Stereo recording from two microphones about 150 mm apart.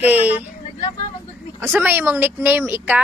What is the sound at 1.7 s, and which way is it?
Speech, 15° right (ahead or behind).